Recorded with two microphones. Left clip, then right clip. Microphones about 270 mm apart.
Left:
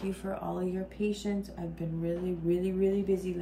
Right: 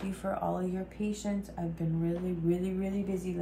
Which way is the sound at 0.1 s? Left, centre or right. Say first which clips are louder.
Right 7 dB; centre.